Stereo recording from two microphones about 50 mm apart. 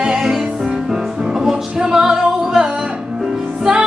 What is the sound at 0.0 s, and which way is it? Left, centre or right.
Music, centre.